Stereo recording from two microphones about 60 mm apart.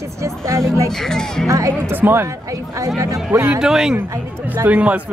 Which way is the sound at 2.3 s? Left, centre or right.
Right.